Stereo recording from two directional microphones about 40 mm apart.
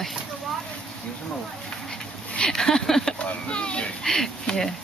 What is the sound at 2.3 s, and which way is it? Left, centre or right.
Speech, centre.